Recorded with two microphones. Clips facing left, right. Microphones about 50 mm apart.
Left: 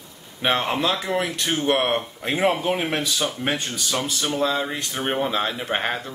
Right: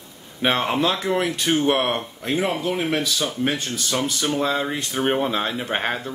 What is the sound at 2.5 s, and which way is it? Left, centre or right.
Speech, left.